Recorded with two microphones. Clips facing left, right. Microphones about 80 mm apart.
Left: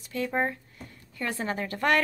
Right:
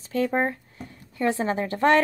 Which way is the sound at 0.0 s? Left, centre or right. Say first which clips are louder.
Right 5 dB; right.